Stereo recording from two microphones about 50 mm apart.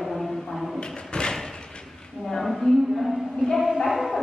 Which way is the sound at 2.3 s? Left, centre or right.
Centre.